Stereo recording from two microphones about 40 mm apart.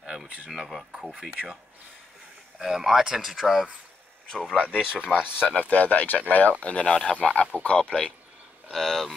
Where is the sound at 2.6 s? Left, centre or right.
Centre.